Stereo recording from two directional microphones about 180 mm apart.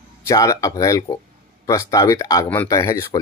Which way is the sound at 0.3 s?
20° left (ahead or behind).